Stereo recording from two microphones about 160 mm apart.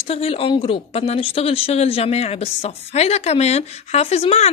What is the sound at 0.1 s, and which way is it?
A woman's voice, 35° left (ahead or behind).